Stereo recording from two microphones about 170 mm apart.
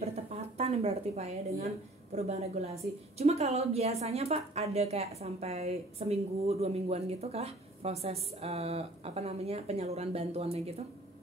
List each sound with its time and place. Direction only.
0.0 s a woman's voice: 35° right (ahead or behind)